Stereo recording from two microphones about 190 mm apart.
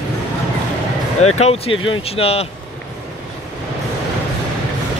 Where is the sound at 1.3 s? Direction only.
35° left (ahead or behind).